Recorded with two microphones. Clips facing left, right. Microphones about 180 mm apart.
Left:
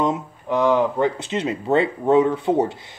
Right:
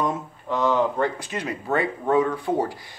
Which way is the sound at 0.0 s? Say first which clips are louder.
Left 4 dB; 15° left (ahead or behind).